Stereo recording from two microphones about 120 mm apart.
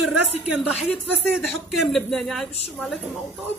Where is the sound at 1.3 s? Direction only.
Centre (ahead or behind).